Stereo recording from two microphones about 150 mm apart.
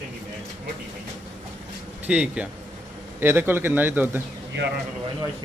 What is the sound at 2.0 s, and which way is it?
A man's voice, 10° right (ahead or behind).